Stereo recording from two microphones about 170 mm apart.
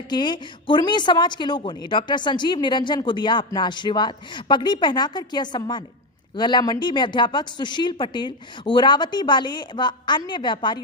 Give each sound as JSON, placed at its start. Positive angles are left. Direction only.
{"t": 0.1, "sound": "speech", "side_deg": 25}